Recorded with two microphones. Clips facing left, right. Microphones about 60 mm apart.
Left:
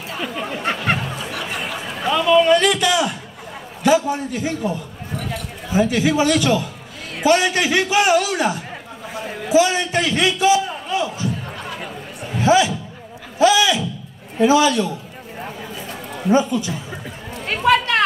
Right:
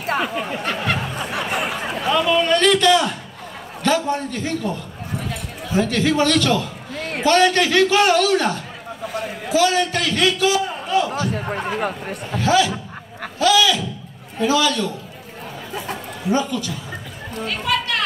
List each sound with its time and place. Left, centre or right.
0.4 s a sound: centre
2.0 s a man's voice: centre
7.0 s a sound: right
7.2 s a man's voice: centre
11.1 s speech: right
11.4 s chatter: right
12.4 s a man's voice: centre
13.4 s a sound: left
14.4 s a man's voice: left
16.3 s a man's voice: left
17.5 s chatter: left